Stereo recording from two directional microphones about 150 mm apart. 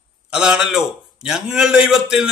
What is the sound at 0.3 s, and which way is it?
A man's voice, 5° right (ahead or behind).